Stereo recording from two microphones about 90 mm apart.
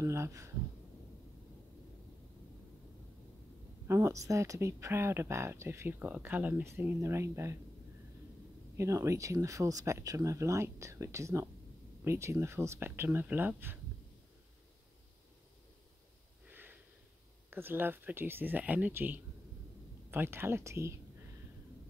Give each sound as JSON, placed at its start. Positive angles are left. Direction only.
{"t": 0.0, "sound": "speech", "side_deg": -35}
{"t": 3.8, "sound": "speech", "side_deg": -30}
{"t": 7.0, "sound": "speech", "side_deg": -30}
{"t": 8.7, "sound": "speech", "side_deg": -35}
{"t": 16.4, "sound": "a sound", "side_deg": -20}
{"t": 17.5, "sound": "speech", "side_deg": -25}